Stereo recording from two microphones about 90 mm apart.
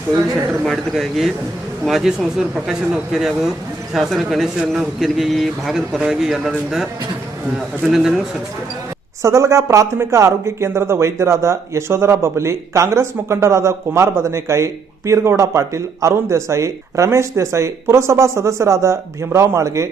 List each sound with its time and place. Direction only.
0.7 s a man's voice: centre (ahead or behind)
9.2 s speech: 35° right (ahead or behind)